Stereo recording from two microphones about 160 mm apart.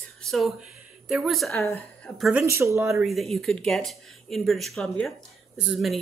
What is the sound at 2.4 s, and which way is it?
Speech, 20° right (ahead or behind).